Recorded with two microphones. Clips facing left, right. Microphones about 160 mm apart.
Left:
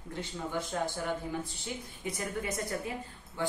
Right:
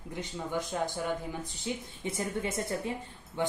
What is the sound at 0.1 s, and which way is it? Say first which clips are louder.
Speech: right 1 dB; 15° right (ahead or behind).